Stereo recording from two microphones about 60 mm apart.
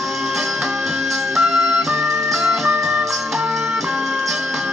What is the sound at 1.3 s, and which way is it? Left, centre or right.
Music, centre.